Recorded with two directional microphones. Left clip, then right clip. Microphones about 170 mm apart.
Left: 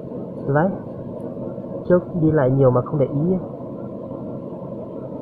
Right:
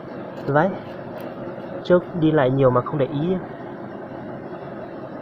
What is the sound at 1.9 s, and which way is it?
Speech, 20° right (ahead or behind).